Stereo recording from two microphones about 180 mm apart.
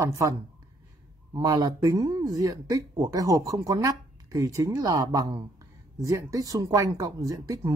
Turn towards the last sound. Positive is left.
turn(degrees=-20)  # may be behind; listen again after turning